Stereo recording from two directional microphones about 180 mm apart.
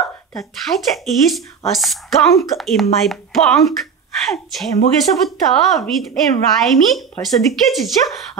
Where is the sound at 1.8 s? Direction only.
Centre (ahead or behind).